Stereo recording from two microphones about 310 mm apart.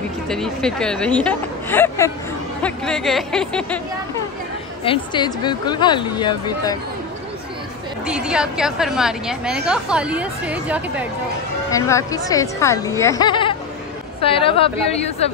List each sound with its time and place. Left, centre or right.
0.3 s speech: centre
4.8 s speech: centre
8.0 s speech: centre
11.7 s speech: centre